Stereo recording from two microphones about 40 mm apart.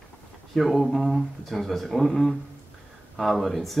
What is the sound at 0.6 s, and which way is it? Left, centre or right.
Speech, centre.